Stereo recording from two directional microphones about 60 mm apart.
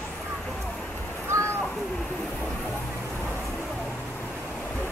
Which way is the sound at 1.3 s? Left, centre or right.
Right.